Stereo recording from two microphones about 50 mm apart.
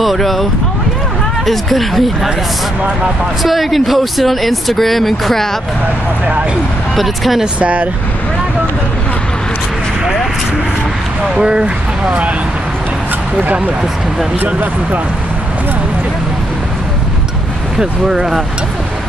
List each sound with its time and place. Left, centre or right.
0.0 s speech: centre
3.4 s speech: centre
7.0 s speech: centre
7.6 s speech: right
11.3 s speech: centre
14.4 s speech: right
17.7 s speech: centre